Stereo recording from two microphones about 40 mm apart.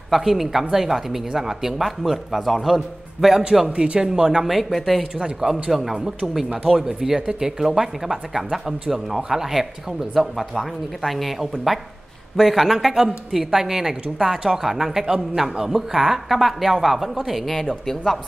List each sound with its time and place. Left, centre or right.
0.1 s a woman's voice: centre
3.7 s speech: right
4.0 s a woman's voice: centre
4.5 s speech: centre
5.2 s a woman's voice: centre
6.5 s speech: right
6.8 s a woman's voice: centre